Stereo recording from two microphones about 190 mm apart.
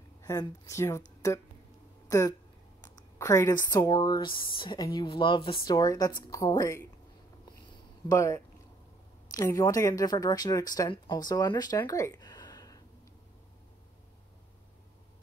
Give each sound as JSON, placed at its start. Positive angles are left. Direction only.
{"t": 0.2, "sound": "speech", "side_deg": 15}
{"t": 2.0, "sound": "speech", "side_deg": 15}
{"t": 8.1, "sound": "speech", "side_deg": 15}